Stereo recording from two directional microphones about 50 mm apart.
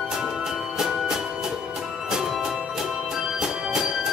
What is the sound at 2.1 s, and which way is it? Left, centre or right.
Music, centre.